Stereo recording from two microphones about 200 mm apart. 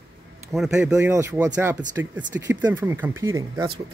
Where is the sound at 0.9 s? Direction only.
15° right (ahead or behind).